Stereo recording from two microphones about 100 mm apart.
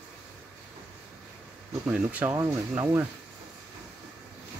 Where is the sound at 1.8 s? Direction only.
10° right (ahead or behind).